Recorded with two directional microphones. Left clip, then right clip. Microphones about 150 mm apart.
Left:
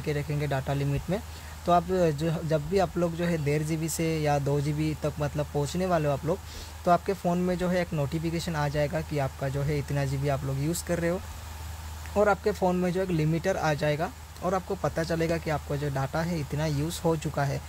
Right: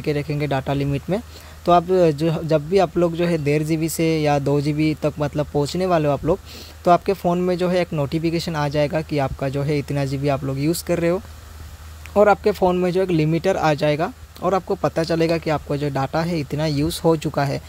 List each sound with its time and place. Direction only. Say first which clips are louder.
0.0 s speech: right 8 dB; 45° right (ahead or behind)